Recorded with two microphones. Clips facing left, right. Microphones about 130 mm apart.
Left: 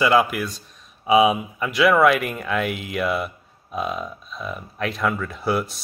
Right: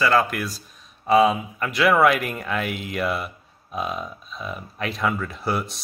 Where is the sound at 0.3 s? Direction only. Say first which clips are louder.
Left 2 dB; centre (ahead or behind).